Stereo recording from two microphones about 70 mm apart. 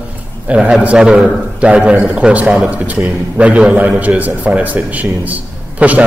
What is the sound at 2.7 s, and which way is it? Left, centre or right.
A man's voice, right.